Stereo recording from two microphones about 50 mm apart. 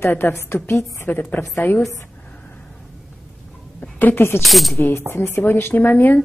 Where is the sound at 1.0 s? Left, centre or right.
Left.